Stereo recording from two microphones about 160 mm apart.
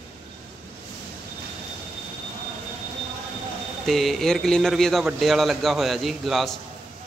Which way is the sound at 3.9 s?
Centre (ahead or behind).